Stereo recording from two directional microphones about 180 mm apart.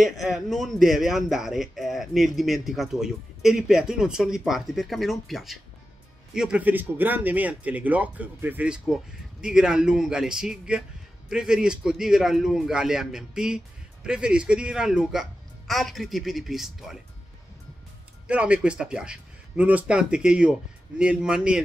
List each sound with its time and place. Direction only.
0.0 s a man's voice: centre (ahead or behind)
18.2 s a man's voice: 5° right (ahead or behind)